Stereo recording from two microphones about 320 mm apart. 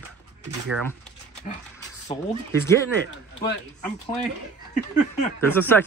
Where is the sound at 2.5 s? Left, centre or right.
Centre.